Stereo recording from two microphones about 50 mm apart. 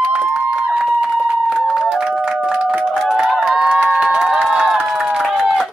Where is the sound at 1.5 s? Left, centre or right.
Centre.